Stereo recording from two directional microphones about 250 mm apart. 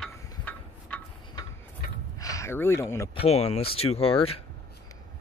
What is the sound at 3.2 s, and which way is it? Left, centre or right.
Speech, left.